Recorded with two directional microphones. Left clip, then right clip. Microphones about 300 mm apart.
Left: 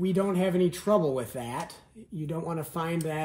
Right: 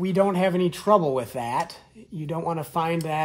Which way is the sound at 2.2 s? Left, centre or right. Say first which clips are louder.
Right 7 dB; right.